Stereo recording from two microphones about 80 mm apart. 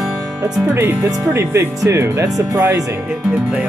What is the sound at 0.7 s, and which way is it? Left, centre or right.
Speech, right.